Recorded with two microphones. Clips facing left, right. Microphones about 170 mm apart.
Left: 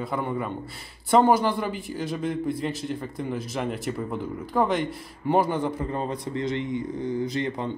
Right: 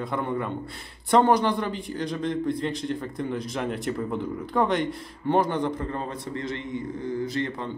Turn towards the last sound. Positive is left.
turn(degrees=15)  # may be behind; listen again after turning